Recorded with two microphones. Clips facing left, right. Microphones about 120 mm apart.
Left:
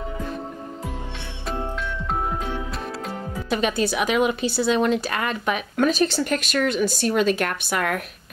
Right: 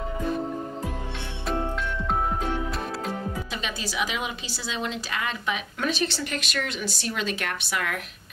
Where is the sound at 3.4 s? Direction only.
55° left (ahead or behind).